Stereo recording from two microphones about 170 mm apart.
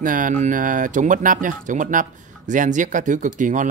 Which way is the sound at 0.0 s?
50° right (ahead or behind).